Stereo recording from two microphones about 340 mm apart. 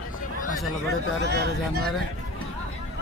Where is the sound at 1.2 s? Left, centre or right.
Right.